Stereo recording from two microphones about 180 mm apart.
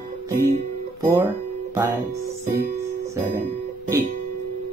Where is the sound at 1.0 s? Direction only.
15° right (ahead or behind).